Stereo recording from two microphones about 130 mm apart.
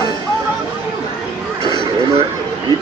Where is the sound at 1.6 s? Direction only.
30° right (ahead or behind).